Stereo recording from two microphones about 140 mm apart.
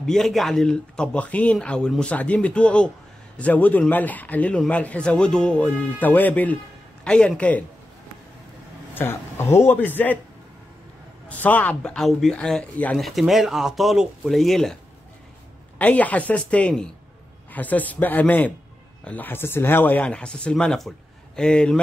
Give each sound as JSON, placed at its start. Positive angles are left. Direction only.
{"t": 0.0, "sound": "a man's voice", "side_deg": 0}
{"t": 8.9, "sound": "a man's voice", "side_deg": 15}
{"t": 11.2, "sound": "a man's voice", "side_deg": 10}
{"t": 15.8, "sound": "a man's voice", "side_deg": 10}